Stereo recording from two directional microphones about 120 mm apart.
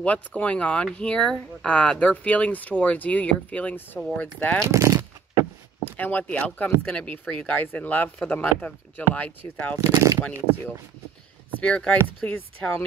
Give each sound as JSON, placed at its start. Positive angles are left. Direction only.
{"t": 0.0, "sound": "speech", "side_deg": 10}
{"t": 4.6, "sound": "a sound", "side_deg": -25}
{"t": 5.9, "sound": "speech", "side_deg": 15}
{"t": 9.8, "sound": "speech", "side_deg": -25}
{"t": 11.6, "sound": "speech", "side_deg": 10}